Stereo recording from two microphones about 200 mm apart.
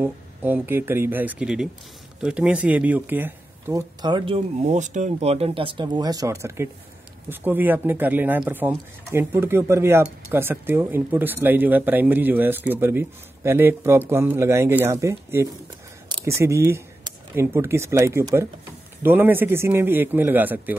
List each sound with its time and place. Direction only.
0.0 s speech: 10° right (ahead or behind)